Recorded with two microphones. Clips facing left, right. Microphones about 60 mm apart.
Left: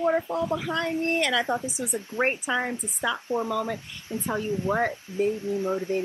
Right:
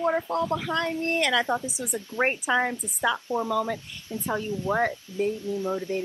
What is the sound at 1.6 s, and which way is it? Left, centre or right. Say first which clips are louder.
Speech: left 1 dB; left.